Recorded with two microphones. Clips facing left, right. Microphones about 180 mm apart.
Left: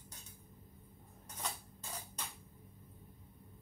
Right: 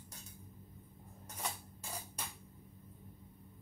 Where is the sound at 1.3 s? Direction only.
10° right (ahead or behind).